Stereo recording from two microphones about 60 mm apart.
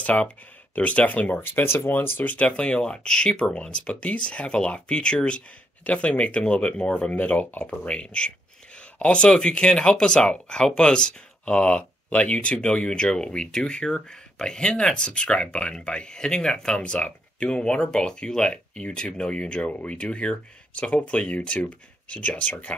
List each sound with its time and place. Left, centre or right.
0.0 s speech: left
1.4 s speech: left